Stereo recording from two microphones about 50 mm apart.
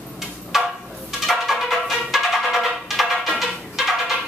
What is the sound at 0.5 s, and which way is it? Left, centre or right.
Music, centre.